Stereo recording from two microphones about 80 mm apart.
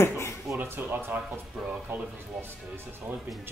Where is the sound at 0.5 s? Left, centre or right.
Right.